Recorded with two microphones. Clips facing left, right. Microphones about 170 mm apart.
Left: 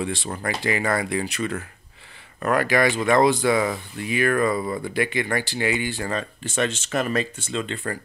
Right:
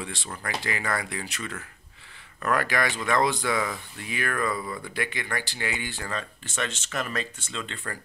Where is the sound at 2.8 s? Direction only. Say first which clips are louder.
Left 6 dB; 20° left (ahead or behind).